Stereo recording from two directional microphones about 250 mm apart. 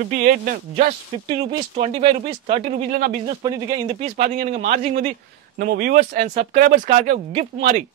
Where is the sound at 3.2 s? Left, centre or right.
Centre.